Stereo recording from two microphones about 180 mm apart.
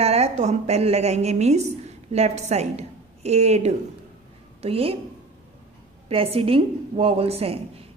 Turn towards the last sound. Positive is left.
turn(degrees=-35)  # may be behind; listen again after turning